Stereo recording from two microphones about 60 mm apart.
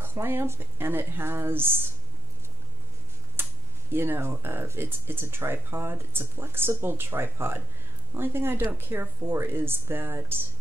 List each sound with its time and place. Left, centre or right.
0.0 s speech: right
3.4 s a sound: right
3.9 s speech: right